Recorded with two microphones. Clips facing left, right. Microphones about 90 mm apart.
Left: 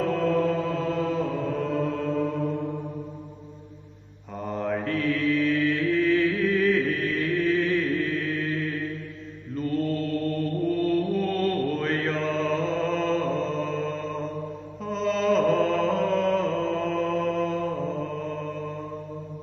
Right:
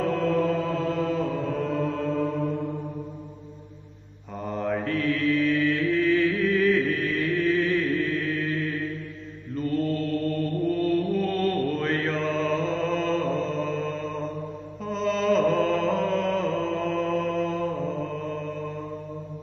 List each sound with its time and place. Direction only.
0.0 s chant: centre (ahead or behind)
2.5 s mantra: 15° left (ahead or behind)
4.4 s mantra: centre (ahead or behind)